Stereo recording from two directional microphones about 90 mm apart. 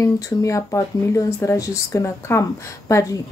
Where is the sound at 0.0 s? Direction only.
35° left (ahead or behind).